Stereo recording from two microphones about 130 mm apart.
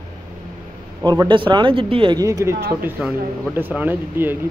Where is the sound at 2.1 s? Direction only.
25° right (ahead or behind).